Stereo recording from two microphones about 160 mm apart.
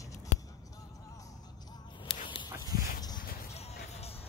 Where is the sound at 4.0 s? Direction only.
40° left (ahead or behind).